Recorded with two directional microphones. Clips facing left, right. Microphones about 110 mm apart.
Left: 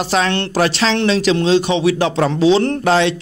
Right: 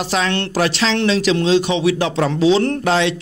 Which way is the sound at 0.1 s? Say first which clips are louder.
Left 2 dB; 40° left (ahead or behind).